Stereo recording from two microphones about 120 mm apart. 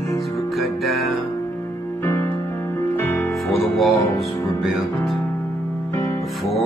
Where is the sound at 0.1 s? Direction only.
Centre (ahead or behind).